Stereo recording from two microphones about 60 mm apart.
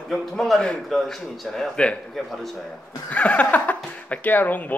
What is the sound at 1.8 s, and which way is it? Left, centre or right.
Speech, centre.